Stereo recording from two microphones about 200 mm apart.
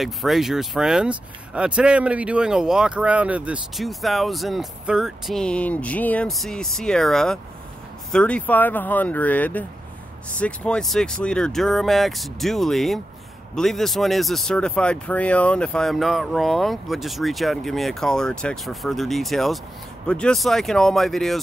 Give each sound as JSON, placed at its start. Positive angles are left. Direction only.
{"t": 0.0, "sound": "speech", "side_deg": 0}